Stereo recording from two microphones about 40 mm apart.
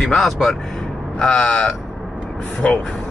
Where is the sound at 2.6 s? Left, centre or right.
Left.